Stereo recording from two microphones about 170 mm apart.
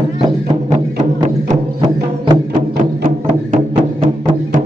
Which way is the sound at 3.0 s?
50° right (ahead or behind).